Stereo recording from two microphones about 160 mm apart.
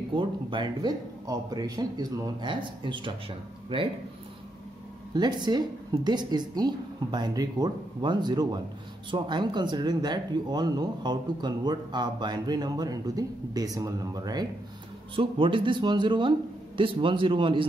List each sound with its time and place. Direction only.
0.1 s speech: 30° right (ahead or behind)
5.1 s speech: 25° right (ahead or behind)